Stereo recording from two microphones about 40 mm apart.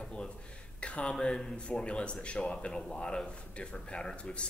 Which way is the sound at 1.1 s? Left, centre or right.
Centre.